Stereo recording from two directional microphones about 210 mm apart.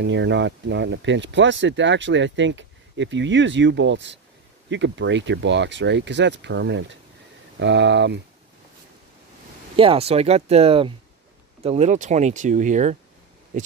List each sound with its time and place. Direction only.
0.0 s speech: 55° right (ahead or behind)
9.8 s speech: 25° right (ahead or behind)